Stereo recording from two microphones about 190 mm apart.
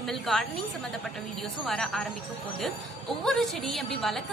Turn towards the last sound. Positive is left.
turn(degrees=0)  # may be behind; listen again after turning